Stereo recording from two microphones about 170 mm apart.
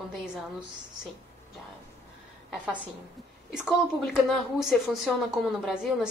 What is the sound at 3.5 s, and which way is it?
A woman's voice, 5° right (ahead or behind).